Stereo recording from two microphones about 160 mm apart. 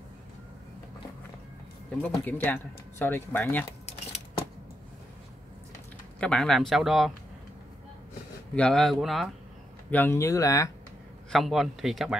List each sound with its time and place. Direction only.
2.0 s speech: 10° left (ahead or behind)
6.1 s speech: 5° left (ahead or behind)
8.5 s speech: 5° left (ahead or behind)
9.8 s speech: 10° left (ahead or behind)
11.2 s speech: centre (ahead or behind)